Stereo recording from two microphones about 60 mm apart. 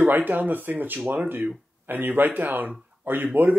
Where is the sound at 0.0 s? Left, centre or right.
Right.